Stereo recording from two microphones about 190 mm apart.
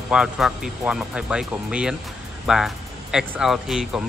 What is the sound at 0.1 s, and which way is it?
Speech, 5° right (ahead or behind).